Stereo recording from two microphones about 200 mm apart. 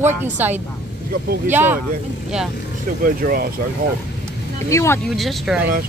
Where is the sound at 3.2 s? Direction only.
45° right (ahead or behind).